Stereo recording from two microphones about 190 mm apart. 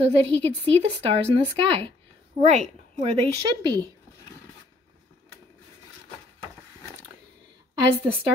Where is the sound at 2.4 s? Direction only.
35° right (ahead or behind).